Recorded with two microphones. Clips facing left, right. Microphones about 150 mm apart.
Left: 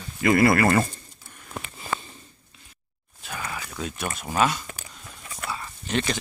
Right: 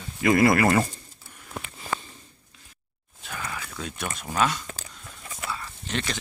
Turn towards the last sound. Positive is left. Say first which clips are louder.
# left 4 dB
turn(degrees=15)  # may be behind; listen again after turning